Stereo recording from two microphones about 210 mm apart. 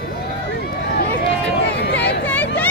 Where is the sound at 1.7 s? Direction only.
50° left (ahead or behind).